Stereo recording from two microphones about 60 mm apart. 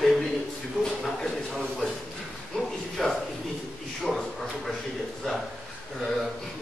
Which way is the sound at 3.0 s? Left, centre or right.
Centre.